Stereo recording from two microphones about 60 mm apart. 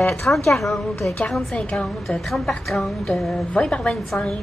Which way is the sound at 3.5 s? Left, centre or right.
Centre.